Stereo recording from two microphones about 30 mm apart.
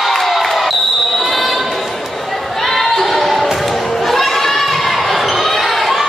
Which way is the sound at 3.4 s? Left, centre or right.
Centre.